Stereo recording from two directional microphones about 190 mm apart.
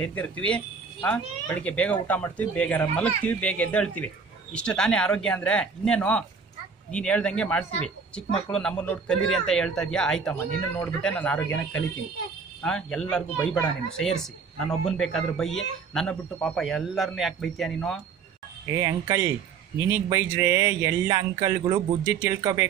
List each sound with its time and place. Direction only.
0.0 s speech: 5° left (ahead or behind)
18.8 s speech: 20° right (ahead or behind)